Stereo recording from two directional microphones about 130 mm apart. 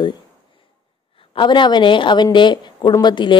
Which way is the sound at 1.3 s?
40° left (ahead or behind).